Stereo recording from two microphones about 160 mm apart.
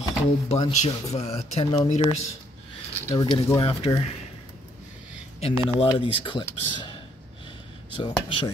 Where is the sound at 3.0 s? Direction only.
30° left (ahead or behind).